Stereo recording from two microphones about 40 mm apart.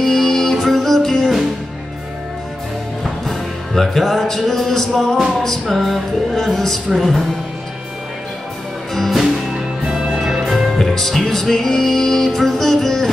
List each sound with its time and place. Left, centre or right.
0.0 s music: centre
3.0 s music: centre
9.5 s music: right
10.2 s music: centre